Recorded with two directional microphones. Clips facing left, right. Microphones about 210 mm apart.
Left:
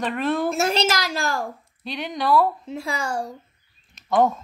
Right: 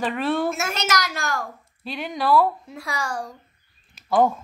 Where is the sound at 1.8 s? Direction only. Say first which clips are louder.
Even; centre (ahead or behind).